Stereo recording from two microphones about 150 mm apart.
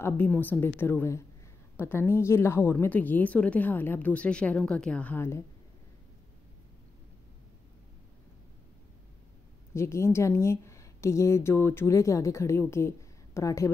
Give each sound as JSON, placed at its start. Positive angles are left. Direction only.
{"t": 0.0, "sound": "speech", "side_deg": 15}
{"t": 9.8, "sound": "a woman's voice", "side_deg": 20}